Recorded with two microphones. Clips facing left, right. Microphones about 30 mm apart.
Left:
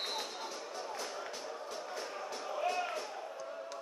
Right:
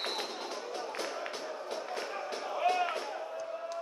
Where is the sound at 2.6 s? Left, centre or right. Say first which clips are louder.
Right 6 dB; right.